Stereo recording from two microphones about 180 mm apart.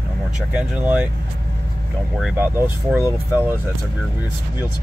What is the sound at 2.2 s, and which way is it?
Speech, 5° right (ahead or behind).